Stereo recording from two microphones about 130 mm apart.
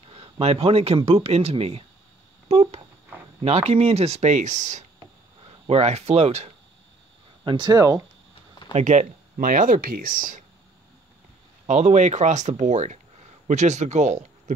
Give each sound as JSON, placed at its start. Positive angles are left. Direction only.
{"t": 0.0, "sound": "speech", "side_deg": -50}
{"t": 5.4, "sound": "speech", "side_deg": -50}
{"t": 7.4, "sound": "speech", "side_deg": -35}
{"t": 8.7, "sound": "speech", "side_deg": -65}
{"t": 11.6, "sound": "speech", "side_deg": -60}